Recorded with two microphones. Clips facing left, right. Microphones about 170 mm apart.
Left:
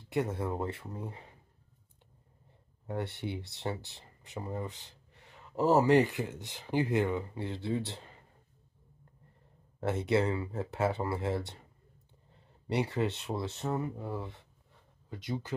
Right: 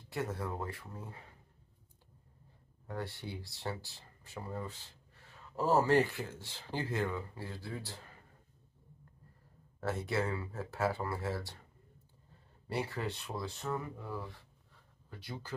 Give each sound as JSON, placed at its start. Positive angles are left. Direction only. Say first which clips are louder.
{"t": 0.1, "sound": "speech", "louder": "left 6 dB", "side_deg": 20}
{"t": 2.9, "sound": "speech", "louder": "left 5 dB", "side_deg": 20}
{"t": 9.8, "sound": "speech", "louder": "left 6 dB", "side_deg": 20}
{"t": 12.6, "sound": "speech", "louder": "left 6 dB", "side_deg": 20}